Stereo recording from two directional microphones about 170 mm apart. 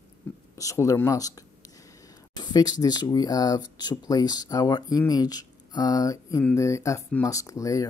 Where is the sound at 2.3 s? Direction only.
25° left (ahead or behind).